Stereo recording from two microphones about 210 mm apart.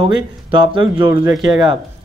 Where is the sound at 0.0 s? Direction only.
25° right (ahead or behind).